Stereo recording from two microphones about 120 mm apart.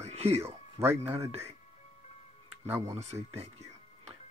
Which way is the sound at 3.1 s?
30° right (ahead or behind).